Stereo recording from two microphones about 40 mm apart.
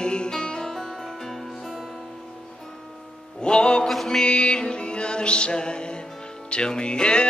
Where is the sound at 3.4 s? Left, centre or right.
Left.